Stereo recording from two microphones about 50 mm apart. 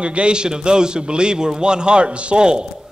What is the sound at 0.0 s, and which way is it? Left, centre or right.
A man's voice, right.